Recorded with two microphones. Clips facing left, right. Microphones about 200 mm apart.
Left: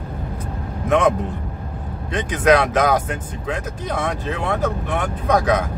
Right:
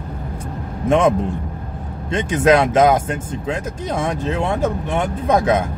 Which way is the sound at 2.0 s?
25° right (ahead or behind).